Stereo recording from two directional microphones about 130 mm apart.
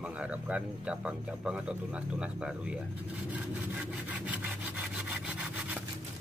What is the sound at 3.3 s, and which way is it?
Sawing, 10° right (ahead or behind).